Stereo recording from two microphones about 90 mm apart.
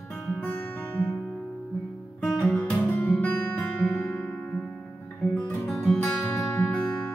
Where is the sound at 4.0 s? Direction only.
20° left (ahead or behind).